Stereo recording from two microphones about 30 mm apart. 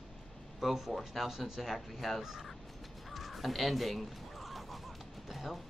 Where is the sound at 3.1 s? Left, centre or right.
Centre.